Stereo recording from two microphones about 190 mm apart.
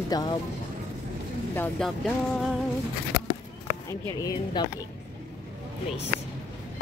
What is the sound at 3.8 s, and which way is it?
Speech, 20° left (ahead or behind).